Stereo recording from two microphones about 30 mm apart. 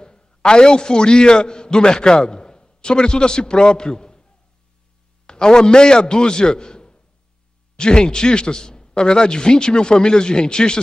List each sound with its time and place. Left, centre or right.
0.0 s a man's voice: left
5.2 s a man's voice: left